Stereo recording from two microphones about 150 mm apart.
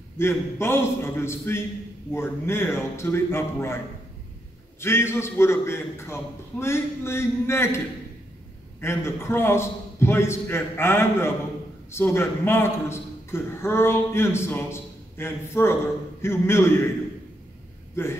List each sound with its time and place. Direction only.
0.2 s a man's voice: 15° left (ahead or behind)
8.8 s a man's voice: 15° left (ahead or behind)